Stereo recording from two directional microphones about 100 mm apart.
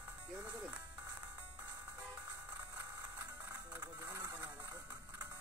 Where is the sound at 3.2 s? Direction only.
35° right (ahead or behind).